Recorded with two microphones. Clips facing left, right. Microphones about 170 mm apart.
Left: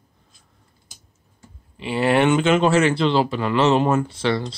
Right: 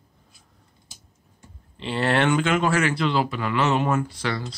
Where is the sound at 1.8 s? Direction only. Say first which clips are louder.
Left 4 dB; 10° left (ahead or behind).